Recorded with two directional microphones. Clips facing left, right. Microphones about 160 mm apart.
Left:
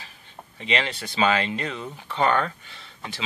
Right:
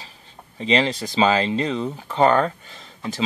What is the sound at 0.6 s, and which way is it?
Speech, 35° right (ahead or behind).